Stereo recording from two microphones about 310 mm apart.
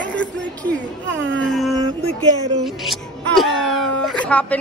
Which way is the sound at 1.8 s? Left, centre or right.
Centre.